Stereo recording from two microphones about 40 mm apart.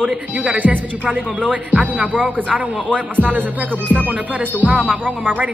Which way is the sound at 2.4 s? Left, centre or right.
Right.